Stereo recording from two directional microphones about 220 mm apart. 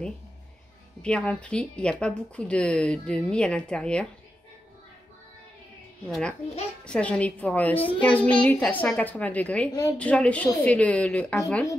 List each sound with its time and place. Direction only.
1.0 s speech: 5° left (ahead or behind)
6.0 s a child's voice: 5° left (ahead or behind)
9.7 s a child's voice: 15° left (ahead or behind)
9.9 s speech: 5° left (ahead or behind)